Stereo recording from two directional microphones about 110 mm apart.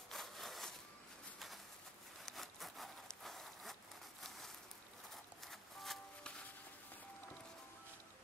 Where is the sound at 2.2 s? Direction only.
Centre (ahead or behind).